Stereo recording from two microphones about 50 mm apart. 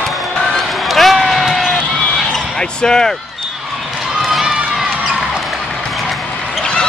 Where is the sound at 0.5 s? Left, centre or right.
Centre.